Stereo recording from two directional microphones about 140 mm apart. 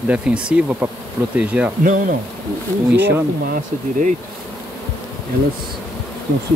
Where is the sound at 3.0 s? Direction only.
15° right (ahead or behind).